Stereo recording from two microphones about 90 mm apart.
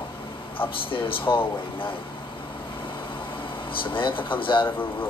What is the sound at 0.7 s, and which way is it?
Speech, 70° left (ahead or behind).